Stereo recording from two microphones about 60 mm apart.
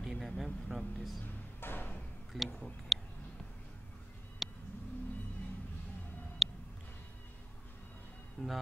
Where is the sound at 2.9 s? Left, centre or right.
Centre.